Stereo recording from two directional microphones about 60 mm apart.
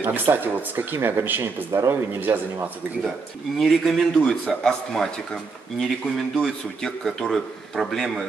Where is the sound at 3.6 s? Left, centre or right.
Centre.